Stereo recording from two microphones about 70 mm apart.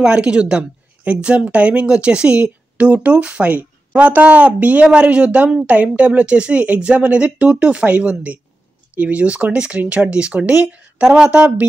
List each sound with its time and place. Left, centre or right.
0.0 s a woman's voice: centre